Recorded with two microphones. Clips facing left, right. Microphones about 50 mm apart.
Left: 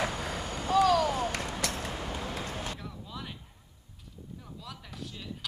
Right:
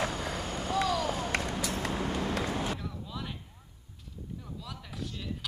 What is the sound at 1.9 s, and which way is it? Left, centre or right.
Vehicle, right.